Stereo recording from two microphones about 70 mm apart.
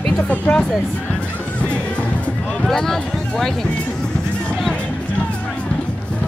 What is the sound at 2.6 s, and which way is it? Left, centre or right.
Speech, centre.